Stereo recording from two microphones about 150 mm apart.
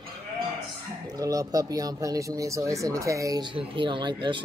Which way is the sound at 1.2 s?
25° right (ahead or behind).